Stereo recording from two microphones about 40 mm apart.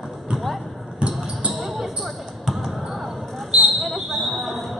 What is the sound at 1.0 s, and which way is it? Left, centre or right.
Basketball bounce, right.